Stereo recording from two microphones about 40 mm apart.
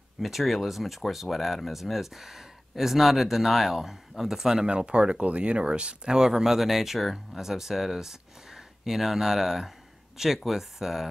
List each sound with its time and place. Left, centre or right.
0.2 s speech: centre
4.6 s speech: right
6.1 s speech: centre